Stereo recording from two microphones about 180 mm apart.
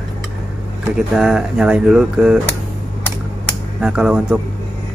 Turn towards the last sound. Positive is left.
turn(degrees=-5)  # may be behind; listen again after turning